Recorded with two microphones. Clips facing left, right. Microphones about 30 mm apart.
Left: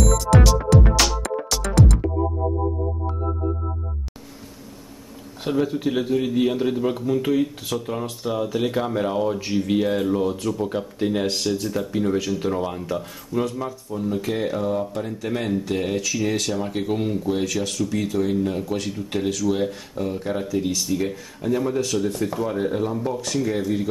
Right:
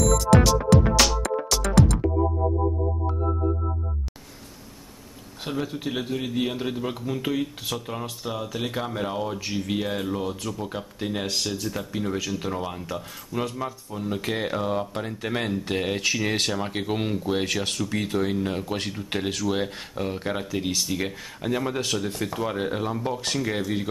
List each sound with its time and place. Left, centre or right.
0.0 s music: centre
5.4 s a man's voice: centre
16.3 s speech: right
16.5 s speech: centre
17.6 s speech: right
21.9 s speech: centre
22.5 s speech: right